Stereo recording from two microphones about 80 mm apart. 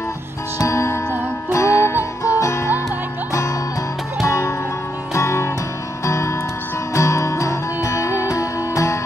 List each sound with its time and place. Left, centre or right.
0.6 s music: left
4.3 s music: left